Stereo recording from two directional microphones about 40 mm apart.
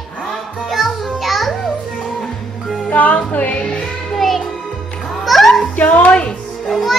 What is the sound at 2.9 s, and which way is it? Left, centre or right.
Music, left.